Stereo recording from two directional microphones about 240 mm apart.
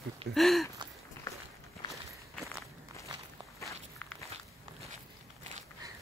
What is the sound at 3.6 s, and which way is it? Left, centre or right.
Walk, centre.